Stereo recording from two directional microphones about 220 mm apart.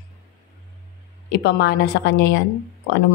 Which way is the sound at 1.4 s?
50° left (ahead or behind).